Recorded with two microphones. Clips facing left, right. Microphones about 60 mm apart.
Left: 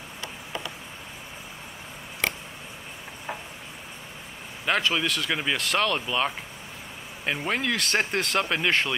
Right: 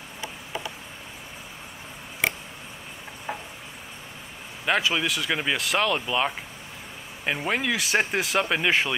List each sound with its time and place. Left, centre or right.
0.2 s a sound: centre
2.2 s tick: centre
4.6 s speech: centre